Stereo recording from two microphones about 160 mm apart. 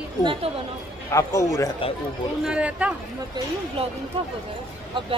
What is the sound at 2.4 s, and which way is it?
Speech, 5° right (ahead or behind).